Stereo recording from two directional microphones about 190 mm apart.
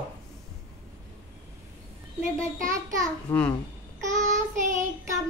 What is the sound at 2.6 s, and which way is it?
Speech, 15° right (ahead or behind).